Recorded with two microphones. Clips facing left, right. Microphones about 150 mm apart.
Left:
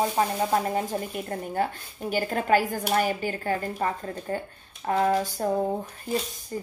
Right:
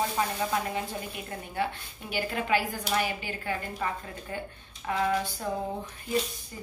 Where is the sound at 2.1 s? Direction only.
45° left (ahead or behind).